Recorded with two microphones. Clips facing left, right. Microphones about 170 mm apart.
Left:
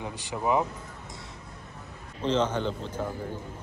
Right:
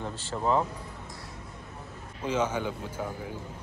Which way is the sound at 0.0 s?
15° left (ahead or behind).